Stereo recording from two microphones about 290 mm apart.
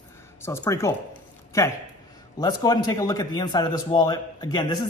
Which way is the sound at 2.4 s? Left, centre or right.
Centre.